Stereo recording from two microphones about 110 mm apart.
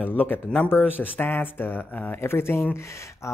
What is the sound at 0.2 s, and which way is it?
Speech, 15° left (ahead or behind).